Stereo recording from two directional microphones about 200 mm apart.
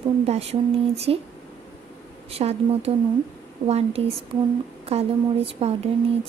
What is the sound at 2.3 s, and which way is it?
A woman's voice, 30° right (ahead or behind).